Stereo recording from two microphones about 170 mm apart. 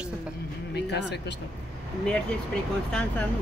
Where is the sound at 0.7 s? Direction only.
85° left.